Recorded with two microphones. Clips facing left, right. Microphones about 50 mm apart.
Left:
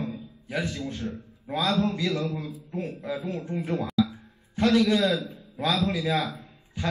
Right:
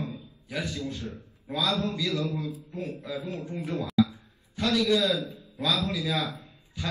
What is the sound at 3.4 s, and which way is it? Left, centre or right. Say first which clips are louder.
A man's voice: left 3 dB; left.